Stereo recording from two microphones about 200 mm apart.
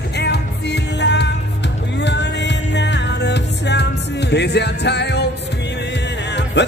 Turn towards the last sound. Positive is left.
turn(degrees=60)  # may be behind; listen again after turning